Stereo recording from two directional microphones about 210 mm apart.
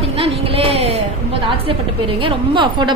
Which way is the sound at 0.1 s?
25° right (ahead or behind).